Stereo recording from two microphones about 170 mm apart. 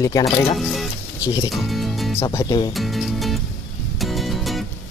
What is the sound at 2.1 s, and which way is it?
Speech, 20° left (ahead or behind).